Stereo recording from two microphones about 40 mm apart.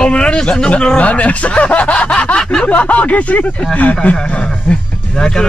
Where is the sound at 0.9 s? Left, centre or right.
Left.